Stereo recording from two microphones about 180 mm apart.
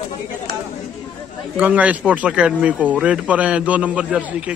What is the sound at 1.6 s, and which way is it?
Speech, 10° right (ahead or behind).